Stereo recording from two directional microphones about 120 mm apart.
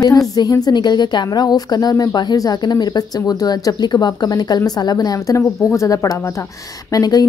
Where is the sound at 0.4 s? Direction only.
30° left (ahead or behind).